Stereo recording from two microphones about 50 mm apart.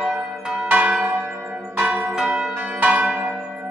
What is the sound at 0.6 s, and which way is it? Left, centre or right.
Church bell, right.